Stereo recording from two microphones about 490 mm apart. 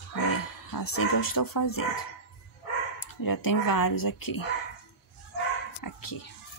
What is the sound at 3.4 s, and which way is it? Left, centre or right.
Speech, left.